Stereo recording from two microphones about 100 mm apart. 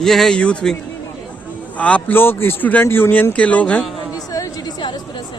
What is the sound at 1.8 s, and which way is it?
A man's voice, 15° left (ahead or behind).